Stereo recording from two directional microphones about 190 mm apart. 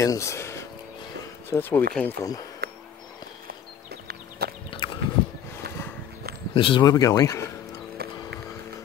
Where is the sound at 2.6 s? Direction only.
50° right (ahead or behind).